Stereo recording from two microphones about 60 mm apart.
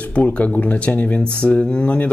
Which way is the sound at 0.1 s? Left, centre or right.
Left.